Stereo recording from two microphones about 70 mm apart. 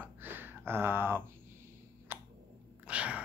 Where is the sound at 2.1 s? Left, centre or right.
Right.